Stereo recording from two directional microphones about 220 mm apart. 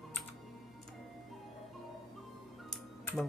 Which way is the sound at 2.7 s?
5° left (ahead or behind).